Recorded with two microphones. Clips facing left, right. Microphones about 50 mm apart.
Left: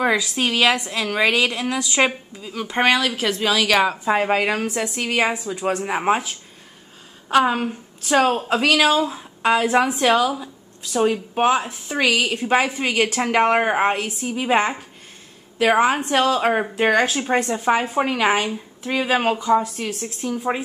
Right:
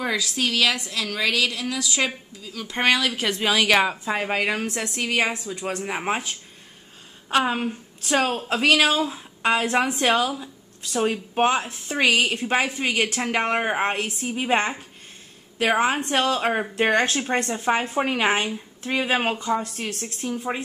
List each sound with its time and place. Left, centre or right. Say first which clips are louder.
0.0 s a woman's voice: left 5 dB; left
2.5 s a woman's voice: left 6 dB; centre
2.8 s a woman's voice: left 3 dB; centre
4.0 s a woman's voice: left 5 dB; centre
10.4 s a sound: left 2 dB; centre
11.1 s a woman's voice: left 2 dB; centre
18.0 s a woman's voice: left 3 dB; centre
19.3 s a woman's voice: left 6 dB; centre